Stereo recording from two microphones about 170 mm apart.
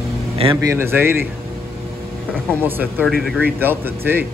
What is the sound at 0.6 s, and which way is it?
Speech, 15° right (ahead or behind).